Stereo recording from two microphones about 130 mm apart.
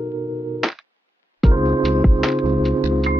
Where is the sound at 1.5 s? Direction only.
30° right (ahead or behind).